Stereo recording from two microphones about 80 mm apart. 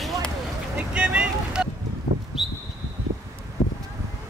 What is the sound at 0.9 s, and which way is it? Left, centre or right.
Vehicle, centre.